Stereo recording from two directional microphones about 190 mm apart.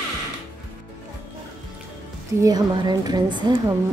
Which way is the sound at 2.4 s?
20° right (ahead or behind).